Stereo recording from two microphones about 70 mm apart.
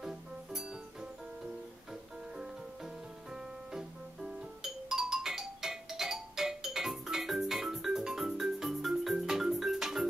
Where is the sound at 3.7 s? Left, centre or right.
Centre.